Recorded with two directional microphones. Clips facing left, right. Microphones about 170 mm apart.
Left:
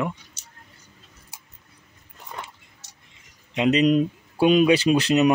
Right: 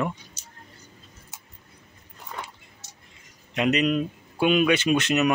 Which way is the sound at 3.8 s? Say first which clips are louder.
Left 5 dB; 35° left (ahead or behind).